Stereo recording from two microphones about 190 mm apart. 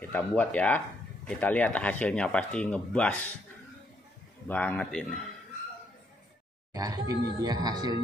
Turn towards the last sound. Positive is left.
turn(degrees=-20)  # may be behind; listen again after turning